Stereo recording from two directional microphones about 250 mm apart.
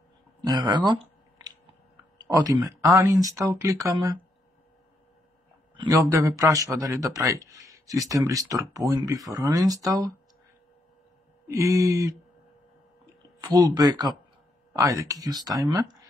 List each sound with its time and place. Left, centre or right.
0.4 s a sound: centre
2.2 s speech: centre
5.8 s speech: centre
11.4 s speech: centre
13.4 s speech: centre